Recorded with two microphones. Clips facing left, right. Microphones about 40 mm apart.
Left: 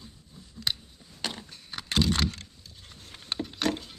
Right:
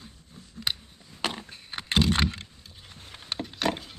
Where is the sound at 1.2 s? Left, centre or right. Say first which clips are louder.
Right 4 dB; right.